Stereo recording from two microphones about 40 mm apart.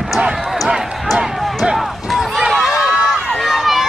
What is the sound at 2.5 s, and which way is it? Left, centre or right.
Crowd, centre.